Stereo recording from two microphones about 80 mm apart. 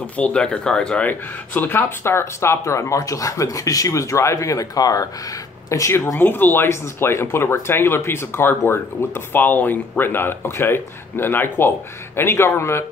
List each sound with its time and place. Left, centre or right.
0.0 s speech: centre; by 12.8 s left